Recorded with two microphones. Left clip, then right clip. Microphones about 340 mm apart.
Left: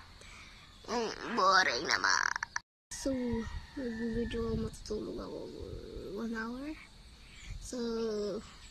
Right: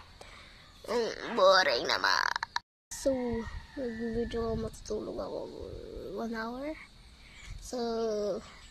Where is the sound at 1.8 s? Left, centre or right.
Centre.